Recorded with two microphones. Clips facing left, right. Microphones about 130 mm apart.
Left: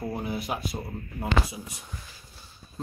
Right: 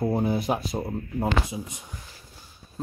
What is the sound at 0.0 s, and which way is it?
Speech, 30° right (ahead or behind).